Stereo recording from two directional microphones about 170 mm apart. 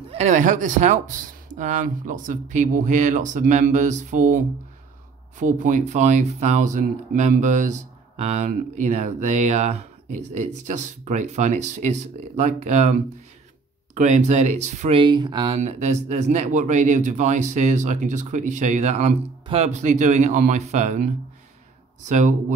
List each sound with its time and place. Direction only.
0.1 s speech: 45° right (ahead or behind)
5.4 s speech: 50° right (ahead or behind)
13.9 s speech: 45° right (ahead or behind)
15.0 s speech: 25° right (ahead or behind); by 22.3 s 45° right (ahead or behind)